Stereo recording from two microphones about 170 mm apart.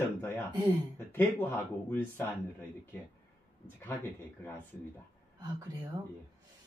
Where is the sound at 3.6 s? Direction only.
10° left (ahead or behind).